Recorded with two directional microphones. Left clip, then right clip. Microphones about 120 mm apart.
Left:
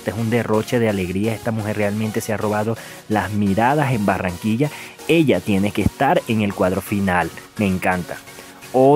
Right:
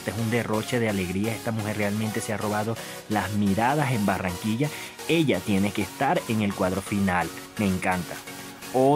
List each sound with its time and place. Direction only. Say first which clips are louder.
0.0 s speech: left 6 dB; 35° left (ahead or behind)